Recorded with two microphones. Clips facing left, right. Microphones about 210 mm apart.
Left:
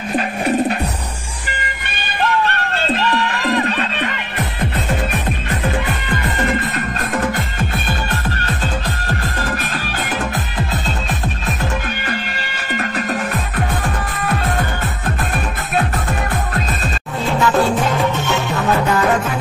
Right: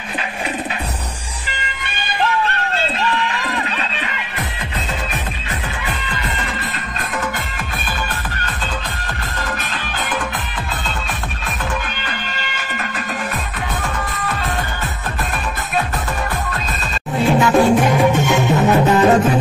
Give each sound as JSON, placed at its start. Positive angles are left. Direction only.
{"t": 3.6, "sound": "music", "side_deg": 55}
{"t": 17.2, "sound": "music", "side_deg": -20}